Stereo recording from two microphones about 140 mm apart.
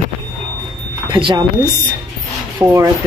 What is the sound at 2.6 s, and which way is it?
Speech, 10° right (ahead or behind).